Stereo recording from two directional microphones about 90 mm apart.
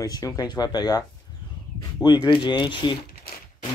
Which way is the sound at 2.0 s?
50° left (ahead or behind).